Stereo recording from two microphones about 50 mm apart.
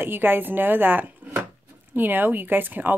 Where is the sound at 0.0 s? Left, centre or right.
Right.